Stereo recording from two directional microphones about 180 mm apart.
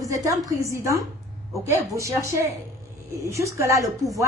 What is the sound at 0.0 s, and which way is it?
A woman's voice, 20° right (ahead or behind).